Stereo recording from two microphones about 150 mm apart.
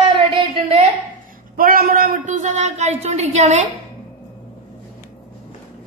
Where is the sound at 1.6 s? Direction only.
75° right (ahead or behind); by 3.6 s 50° right (ahead or behind).